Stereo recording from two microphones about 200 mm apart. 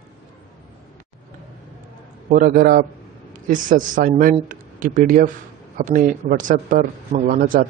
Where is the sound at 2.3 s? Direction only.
45° right (ahead or behind).